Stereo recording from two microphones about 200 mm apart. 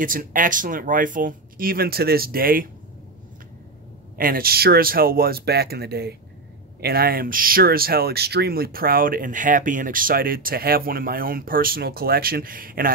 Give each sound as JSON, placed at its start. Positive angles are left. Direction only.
{"t": 0.0, "sound": "speech", "side_deg": -45}
{"t": 4.2, "sound": "speech", "side_deg": -45}